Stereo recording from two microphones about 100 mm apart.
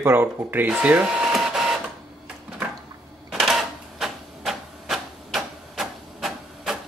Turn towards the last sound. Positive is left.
turn(degrees=-5)  # may be behind; listen again after turning